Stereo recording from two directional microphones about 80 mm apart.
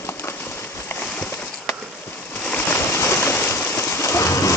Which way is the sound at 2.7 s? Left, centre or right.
Left.